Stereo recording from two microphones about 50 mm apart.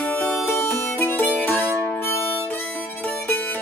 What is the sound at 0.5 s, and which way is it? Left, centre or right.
Music, left.